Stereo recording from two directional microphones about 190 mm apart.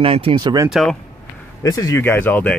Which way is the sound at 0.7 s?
Centre (ahead or behind).